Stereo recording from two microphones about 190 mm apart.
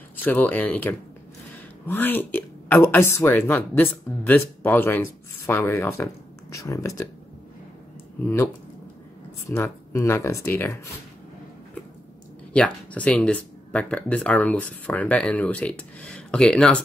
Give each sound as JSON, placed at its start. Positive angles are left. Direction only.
{"t": 0.1, "sound": "speech", "side_deg": 10}
{"t": 9.5, "sound": "speech", "side_deg": 15}
{"t": 12.5, "sound": "speech", "side_deg": 5}